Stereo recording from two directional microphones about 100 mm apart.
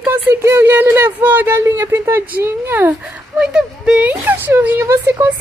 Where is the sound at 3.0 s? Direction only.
10° right (ahead or behind); by 5.3 s 25° right (ahead or behind).